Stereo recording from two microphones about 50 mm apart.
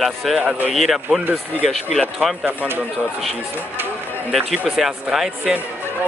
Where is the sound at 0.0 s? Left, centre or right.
Centre.